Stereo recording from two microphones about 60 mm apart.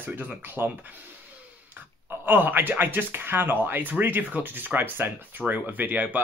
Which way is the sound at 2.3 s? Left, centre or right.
Right.